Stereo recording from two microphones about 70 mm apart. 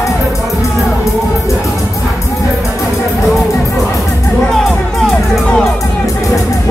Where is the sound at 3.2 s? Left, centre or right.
Centre.